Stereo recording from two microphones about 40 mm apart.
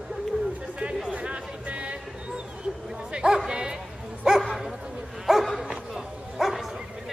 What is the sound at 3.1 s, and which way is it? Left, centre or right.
Bow-wow, centre.